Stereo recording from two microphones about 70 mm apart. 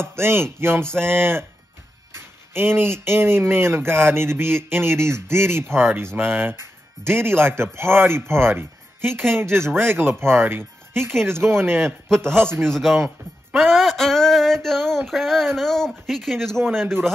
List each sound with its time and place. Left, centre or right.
0.0 s speech: right
11.8 s a man's voice: centre
12.4 s speech: right
12.6 s a sound: centre